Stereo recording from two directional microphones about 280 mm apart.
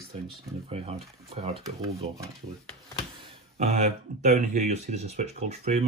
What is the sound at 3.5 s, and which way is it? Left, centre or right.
Speech, right.